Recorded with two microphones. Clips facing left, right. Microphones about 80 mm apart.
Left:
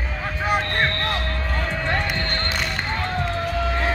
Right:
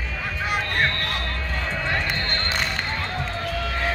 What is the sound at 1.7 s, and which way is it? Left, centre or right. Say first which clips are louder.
Music: even; centre.